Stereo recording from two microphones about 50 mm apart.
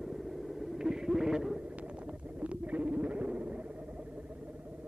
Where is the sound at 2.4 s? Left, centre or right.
Right.